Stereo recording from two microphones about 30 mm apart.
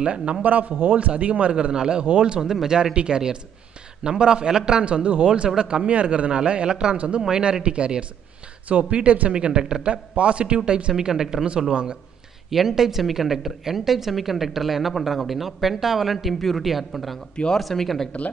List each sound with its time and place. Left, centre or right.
0.0 s a man's voice: right
0.4 s a man's voice: right
0.9 s speech: right
1.7 s speech: right
2.0 s a man's voice: right
2.4 s speech: centre
2.8 s a man's voice: right
4.8 s a man's voice: right
9.3 s a man's voice: right
10.9 s a man's voice: right
12.4 s speech: centre